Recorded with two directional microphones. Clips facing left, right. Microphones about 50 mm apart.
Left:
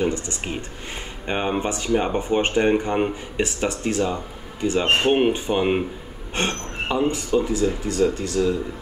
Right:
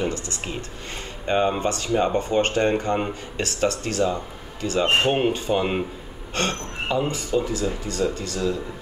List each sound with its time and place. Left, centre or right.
0.1 s speech: left
7.3 s speech: centre